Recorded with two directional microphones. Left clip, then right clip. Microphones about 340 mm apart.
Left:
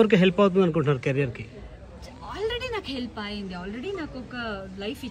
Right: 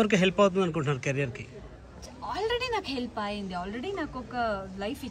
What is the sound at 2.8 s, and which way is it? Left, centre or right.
A woman's voice, centre.